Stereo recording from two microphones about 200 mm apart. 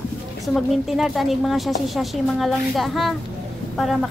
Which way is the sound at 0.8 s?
Centre (ahead or behind).